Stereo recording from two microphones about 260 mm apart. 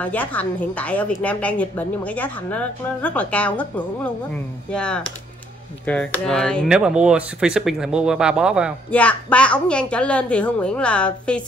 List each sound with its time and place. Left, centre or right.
0.0 s speech: centre